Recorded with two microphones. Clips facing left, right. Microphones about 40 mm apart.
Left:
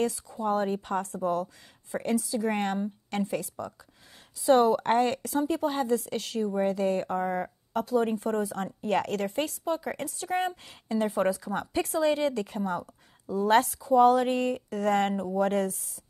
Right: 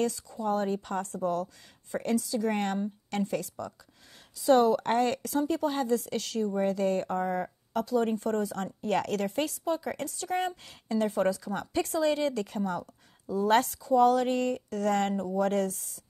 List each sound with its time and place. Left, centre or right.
0.0 s a woman's voice: centre
13.7 s a woman's voice: centre